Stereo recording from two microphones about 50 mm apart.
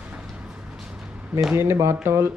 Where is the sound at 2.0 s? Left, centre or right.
Right.